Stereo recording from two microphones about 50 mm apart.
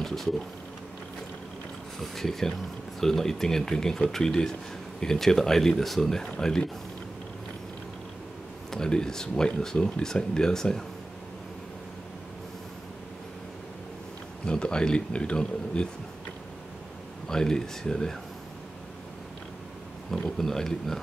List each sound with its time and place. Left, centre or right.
0.0 s speech: centre
2.0 s speech: centre
8.6 s speech: centre
14.4 s speech: centre
17.3 s speech: centre
20.1 s speech: centre